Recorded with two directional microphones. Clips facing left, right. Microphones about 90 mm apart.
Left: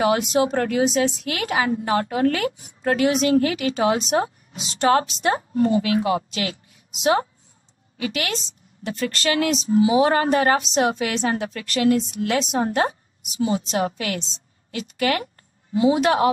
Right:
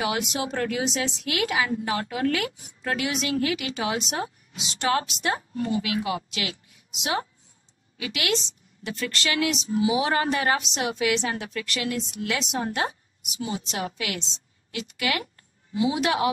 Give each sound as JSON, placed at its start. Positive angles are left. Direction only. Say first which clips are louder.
{"t": 0.0, "sound": "a woman's voice", "louder": "left 8 dB", "side_deg": 40}